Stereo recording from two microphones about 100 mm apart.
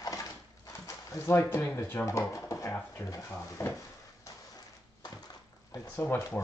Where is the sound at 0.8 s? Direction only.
30° left (ahead or behind).